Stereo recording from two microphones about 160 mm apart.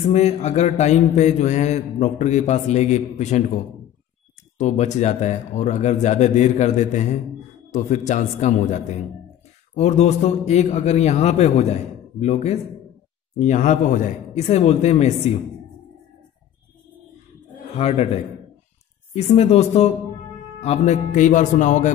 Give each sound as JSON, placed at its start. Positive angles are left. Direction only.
{"t": 0.1, "sound": "a man's voice", "side_deg": 45}
{"t": 4.6, "sound": "a man's voice", "side_deg": 45}
{"t": 17.7, "sound": "a man's voice", "side_deg": 40}